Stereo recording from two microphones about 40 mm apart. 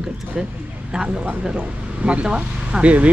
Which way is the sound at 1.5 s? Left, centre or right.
Right.